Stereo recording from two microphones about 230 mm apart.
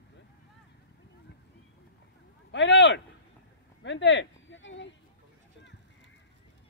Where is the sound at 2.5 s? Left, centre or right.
Left.